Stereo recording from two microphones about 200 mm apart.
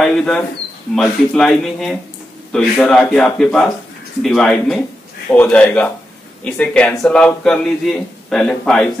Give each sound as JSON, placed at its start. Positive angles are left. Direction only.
{"t": 0.0, "sound": "a man's voice", "side_deg": 5}